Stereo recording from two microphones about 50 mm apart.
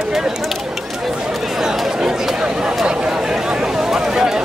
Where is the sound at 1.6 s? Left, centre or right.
Centre.